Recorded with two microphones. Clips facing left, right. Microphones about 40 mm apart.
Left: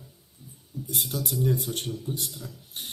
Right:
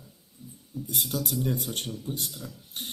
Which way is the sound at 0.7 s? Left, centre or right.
Right.